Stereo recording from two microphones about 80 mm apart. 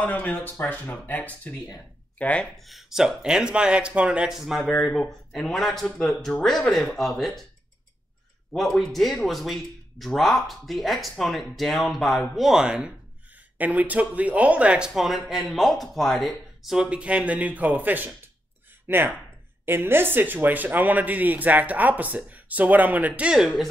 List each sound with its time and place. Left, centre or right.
0.0 s speech: centre
2.6 s speech: centre
8.5 s speech: centre